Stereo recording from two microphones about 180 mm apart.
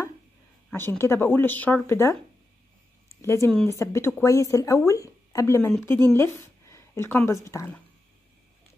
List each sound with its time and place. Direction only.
0.7 s speech: 10° left (ahead or behind)
3.2 s a woman's voice: 15° left (ahead or behind)